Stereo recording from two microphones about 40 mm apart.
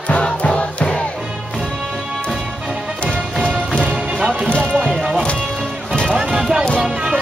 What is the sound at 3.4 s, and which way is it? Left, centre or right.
Music, right.